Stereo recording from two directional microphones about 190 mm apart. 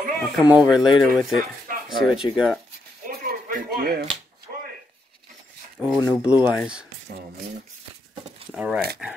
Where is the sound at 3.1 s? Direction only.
50° right (ahead or behind).